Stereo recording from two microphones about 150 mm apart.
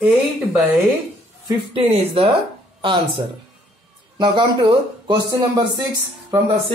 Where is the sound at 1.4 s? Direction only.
40° right (ahead or behind).